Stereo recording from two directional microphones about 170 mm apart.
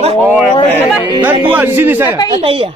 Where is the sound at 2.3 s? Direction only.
35° right (ahead or behind).